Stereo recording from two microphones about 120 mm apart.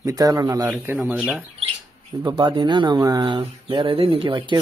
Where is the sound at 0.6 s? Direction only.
15° right (ahead or behind).